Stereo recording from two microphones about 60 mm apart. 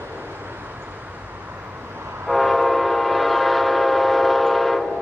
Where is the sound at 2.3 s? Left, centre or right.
Centre.